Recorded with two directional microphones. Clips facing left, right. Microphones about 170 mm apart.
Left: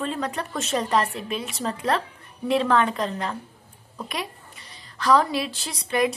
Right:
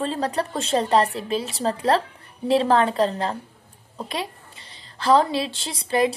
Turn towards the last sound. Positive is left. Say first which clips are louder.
# right 2 dB
turn(degrees=-30)  # may be behind; listen again after turning